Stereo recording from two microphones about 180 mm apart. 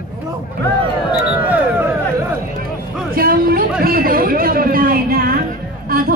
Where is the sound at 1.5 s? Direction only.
10° right (ahead or behind).